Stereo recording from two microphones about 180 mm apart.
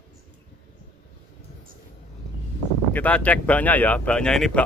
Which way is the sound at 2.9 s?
10° left (ahead or behind).